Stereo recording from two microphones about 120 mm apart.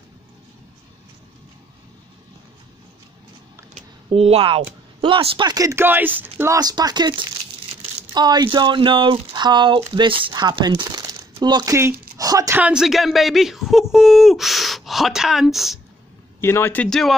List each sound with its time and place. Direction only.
4.1 s speech: 55° right (ahead or behind)
5.5 s speech: 25° right (ahead or behind)
6.5 s speech: 35° right (ahead or behind)
12.5 s speech: 10° right (ahead or behind)
16.3 s speech: 20° left (ahead or behind)
16.9 s speech: centre (ahead or behind)